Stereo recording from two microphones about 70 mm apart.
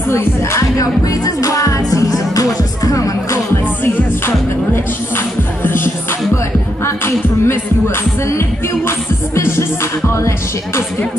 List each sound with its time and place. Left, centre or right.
0.1 s music: left
5.1 s music: left
7.4 s music: left